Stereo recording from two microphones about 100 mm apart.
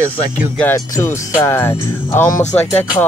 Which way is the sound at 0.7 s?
25° left (ahead or behind).